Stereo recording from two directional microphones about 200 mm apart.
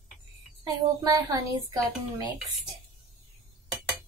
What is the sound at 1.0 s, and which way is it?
Speech, 15° right (ahead or behind).